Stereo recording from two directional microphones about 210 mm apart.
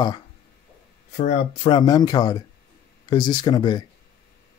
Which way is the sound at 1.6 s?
20° left (ahead or behind).